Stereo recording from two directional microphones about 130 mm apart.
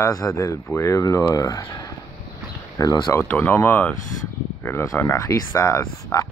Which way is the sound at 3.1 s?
15° left (ahead or behind).